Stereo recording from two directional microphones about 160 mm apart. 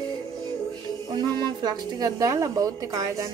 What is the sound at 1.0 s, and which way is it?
A woman's voice, 25° right (ahead or behind).